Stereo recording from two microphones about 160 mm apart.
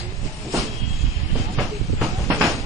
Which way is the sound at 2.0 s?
Centre (ahead or behind).